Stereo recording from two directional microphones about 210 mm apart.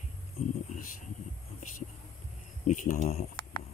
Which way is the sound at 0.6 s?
40° left (ahead or behind).